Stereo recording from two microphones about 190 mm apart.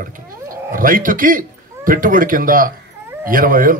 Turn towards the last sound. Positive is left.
turn(degrees=-45)  # may be behind; listen again after turning